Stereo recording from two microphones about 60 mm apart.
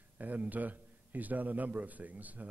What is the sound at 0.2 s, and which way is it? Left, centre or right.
A man's voice, right.